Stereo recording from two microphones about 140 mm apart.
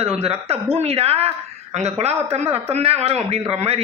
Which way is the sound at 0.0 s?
45° right (ahead or behind).